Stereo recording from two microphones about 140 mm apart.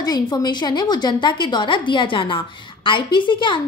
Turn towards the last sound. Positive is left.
turn(degrees=35)  # may be behind; listen again after turning